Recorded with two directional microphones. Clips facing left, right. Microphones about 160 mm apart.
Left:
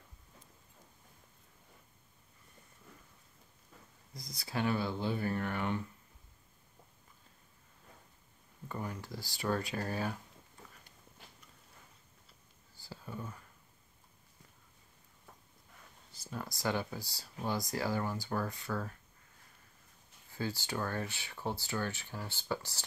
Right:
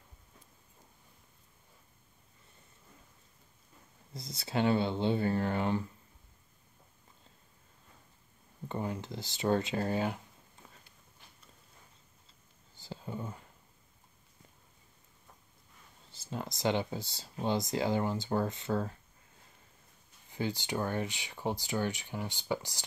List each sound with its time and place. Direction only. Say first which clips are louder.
4.1 s speech: right 5 dB; 25° right (ahead or behind)
8.6 s speech: right 5 dB; 25° right (ahead or behind)
12.7 s a sound: right 4 dB; 20° right (ahead or behind)
16.1 s speech: right 3 dB; 25° right (ahead or behind)
20.2 s speech: right 3 dB; 20° right (ahead or behind)